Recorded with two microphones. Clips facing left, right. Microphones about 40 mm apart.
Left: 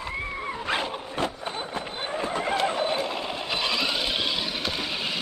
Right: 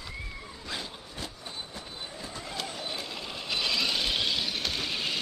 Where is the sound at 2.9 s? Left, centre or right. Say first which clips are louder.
Left 9 dB; left.